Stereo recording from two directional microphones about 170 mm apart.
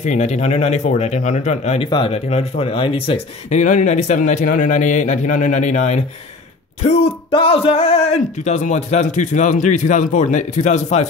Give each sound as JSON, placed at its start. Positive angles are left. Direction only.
{"t": 0.0, "sound": "speech", "side_deg": 45}